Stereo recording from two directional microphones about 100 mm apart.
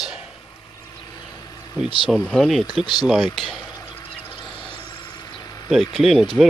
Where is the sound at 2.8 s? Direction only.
50° left (ahead or behind).